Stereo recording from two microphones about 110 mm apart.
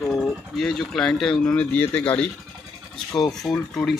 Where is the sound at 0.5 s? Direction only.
Centre (ahead or behind).